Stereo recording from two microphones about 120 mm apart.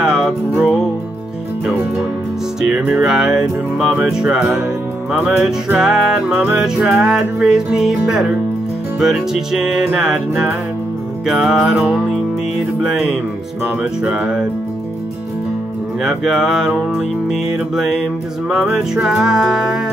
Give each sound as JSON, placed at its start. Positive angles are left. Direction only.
{"t": 0.0, "sound": "music", "side_deg": -10}
{"t": 2.6, "sound": "music", "side_deg": -10}
{"t": 9.3, "sound": "music", "side_deg": -5}
{"t": 14.0, "sound": "music", "side_deg": -10}
{"t": 16.0, "sound": "music", "side_deg": -5}